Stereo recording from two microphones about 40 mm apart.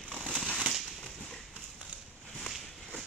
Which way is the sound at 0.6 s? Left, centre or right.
Centre.